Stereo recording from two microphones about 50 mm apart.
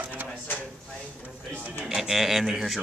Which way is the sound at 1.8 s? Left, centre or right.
Centre.